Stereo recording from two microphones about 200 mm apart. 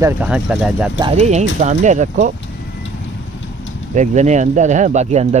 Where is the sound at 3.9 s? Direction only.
35° right (ahead or behind).